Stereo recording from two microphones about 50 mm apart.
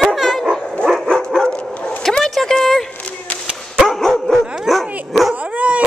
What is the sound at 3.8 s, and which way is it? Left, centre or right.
Dog, centre.